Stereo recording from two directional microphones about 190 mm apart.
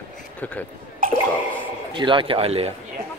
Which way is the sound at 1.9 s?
25° right (ahead or behind).